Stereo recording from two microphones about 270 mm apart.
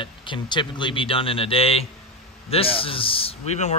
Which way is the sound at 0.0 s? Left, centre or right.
Centre.